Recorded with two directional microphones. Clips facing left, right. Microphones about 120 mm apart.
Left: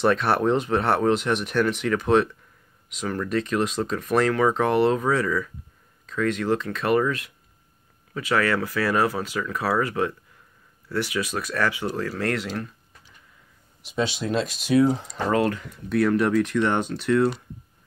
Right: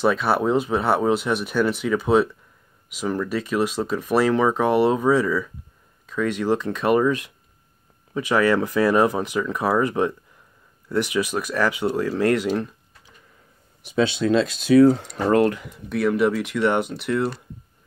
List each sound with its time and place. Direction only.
0.0 s speech: 5° right (ahead or behind)
14.2 s speech: 90° right
14.8 s speech: 75° right (ahead or behind)
15.9 s speech: centre (ahead or behind)